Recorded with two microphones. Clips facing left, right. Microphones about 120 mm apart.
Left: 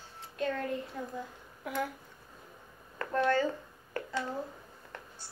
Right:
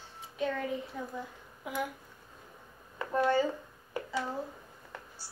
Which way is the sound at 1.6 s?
15° right (ahead or behind).